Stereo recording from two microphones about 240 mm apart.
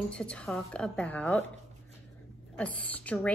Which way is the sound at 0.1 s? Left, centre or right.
Centre.